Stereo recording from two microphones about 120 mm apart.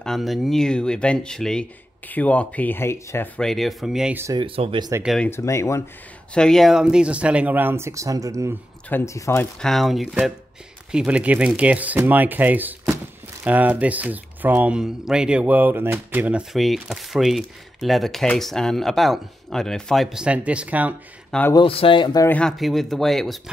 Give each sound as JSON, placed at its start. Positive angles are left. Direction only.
{"t": 0.0, "sound": "speech", "side_deg": 0}
{"t": 3.3, "sound": "speech", "side_deg": 0}
{"t": 4.3, "sound": "speech", "side_deg": -45}
{"t": 5.3, "sound": "speech", "side_deg": 25}
{"t": 6.3, "sound": "speech", "side_deg": 5}
{"t": 9.0, "sound": "speech", "side_deg": 25}
{"t": 9.6, "sound": "speech", "side_deg": 0}
{"t": 16.5, "sound": "speech", "side_deg": 0}
{"t": 21.5, "sound": "speech", "side_deg": 50}
{"t": 22.3, "sound": "speech", "side_deg": 5}